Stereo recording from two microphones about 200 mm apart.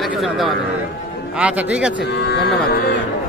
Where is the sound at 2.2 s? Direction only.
55° left (ahead or behind).